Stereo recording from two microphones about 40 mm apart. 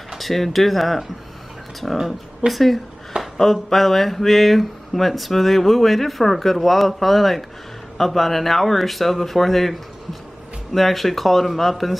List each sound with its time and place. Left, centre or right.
0.2 s speech: centre
3.1 s a sound: right
3.7 s speech: centre